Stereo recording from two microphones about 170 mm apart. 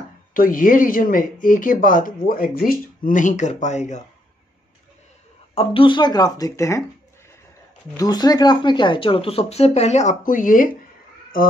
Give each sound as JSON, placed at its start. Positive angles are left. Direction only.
{"t": 0.3, "sound": "speech", "side_deg": 55}
{"t": 5.5, "sound": "speech", "side_deg": 35}
{"t": 8.0, "sound": "speech", "side_deg": 20}